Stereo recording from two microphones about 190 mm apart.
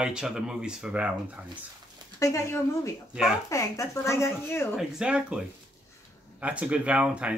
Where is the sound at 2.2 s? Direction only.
15° left (ahead or behind).